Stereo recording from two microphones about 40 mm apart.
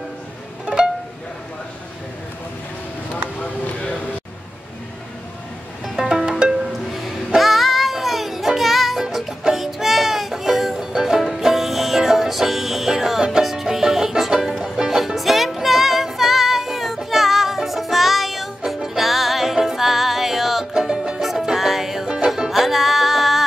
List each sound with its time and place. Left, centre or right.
0.7 s music: right
5.9 s music: centre
20.7 s music: centre
21.2 s music: centre